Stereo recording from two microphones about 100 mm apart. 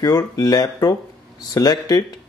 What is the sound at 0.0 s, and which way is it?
Speech, 40° left (ahead or behind).